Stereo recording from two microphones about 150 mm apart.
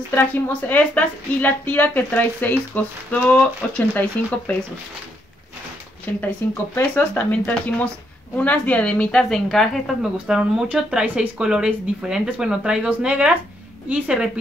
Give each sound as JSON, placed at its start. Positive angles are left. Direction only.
{"t": 0.1, "sound": "a woman's voice", "side_deg": 15}
{"t": 6.2, "sound": "a woman's voice", "side_deg": 15}